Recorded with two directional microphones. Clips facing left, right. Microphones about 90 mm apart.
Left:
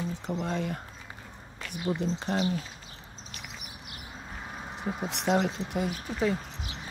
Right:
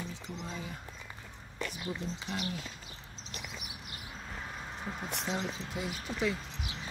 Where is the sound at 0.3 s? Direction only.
55° left (ahead or behind).